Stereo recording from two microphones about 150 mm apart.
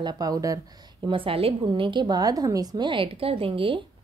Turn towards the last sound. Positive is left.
turn(degrees=-35)  # may be behind; listen again after turning